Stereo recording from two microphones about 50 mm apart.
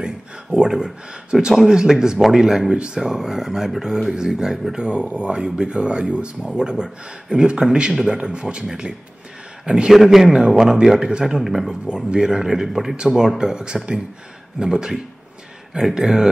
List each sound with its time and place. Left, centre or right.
0.0 s a man's voice: centre
11.2 s speech: centre